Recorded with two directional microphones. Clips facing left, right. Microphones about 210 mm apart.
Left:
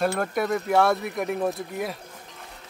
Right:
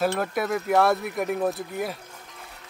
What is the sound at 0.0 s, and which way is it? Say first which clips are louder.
Speech: even; centre (ahead or behind).